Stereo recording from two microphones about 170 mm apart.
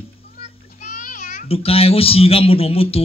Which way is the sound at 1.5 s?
35° left (ahead or behind).